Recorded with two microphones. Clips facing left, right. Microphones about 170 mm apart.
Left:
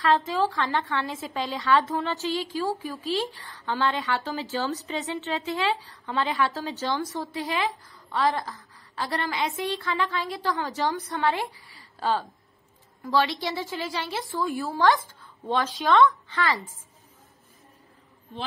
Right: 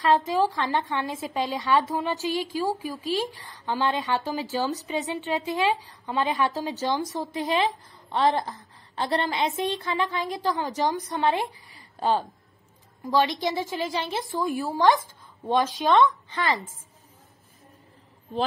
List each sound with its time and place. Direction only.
0.0 s a woman's voice: 15° right (ahead or behind)